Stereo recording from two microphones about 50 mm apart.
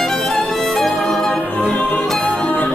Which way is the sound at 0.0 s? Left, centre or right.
Centre.